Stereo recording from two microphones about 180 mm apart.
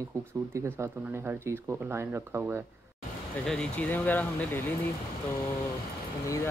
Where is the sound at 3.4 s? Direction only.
5° left (ahead or behind).